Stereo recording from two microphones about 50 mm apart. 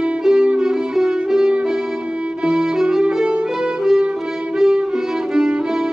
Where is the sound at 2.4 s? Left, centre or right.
Centre.